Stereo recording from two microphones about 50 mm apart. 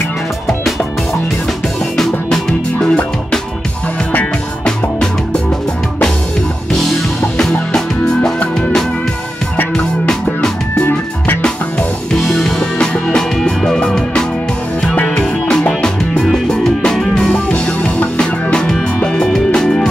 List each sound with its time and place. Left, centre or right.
2.0 s music: centre
4.6 s music: centre
7.7 s music: centre
12.3 s music: centre